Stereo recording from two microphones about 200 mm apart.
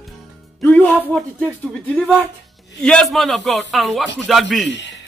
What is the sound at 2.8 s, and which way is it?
A man's voice, 5° left (ahead or behind).